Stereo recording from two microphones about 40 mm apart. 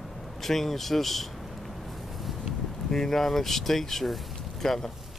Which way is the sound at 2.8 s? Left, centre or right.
Centre.